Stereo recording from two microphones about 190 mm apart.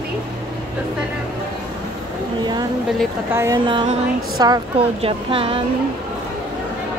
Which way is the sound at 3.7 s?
25° right (ahead or behind).